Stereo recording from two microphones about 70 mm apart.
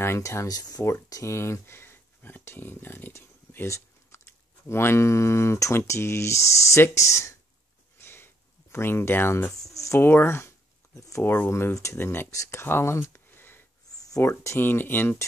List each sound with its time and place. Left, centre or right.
0.0 s speech: left
0.5 s speech: left
1.1 s speech: left
8.0 s sniff: left
8.7 s speech: left
9.6 s a sound: left
9.9 s speech: left
11.0 s speech: left
11.2 s speech: left
11.7 s speech: left
13.9 s a sound: left
14.2 s speech: left